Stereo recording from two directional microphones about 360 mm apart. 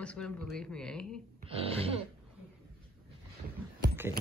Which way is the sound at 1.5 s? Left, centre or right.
Centre.